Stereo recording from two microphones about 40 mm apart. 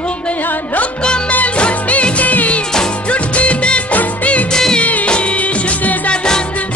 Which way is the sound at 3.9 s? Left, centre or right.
Left.